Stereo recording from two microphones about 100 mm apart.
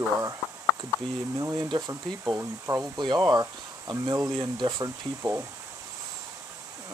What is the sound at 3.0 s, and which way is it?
Speech, 45° right (ahead or behind).